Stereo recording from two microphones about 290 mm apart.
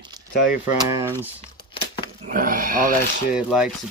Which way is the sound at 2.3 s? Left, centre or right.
Right.